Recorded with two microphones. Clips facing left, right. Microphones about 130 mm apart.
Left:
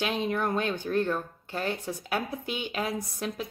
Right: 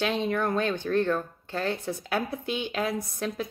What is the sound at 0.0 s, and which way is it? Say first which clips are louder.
Speech: right 2 dB; 15° left (ahead or behind).